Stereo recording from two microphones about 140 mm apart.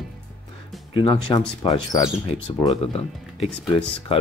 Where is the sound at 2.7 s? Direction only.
45° left (ahead or behind).